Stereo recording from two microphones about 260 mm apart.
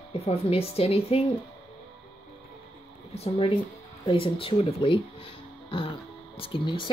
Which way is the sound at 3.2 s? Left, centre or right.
Left.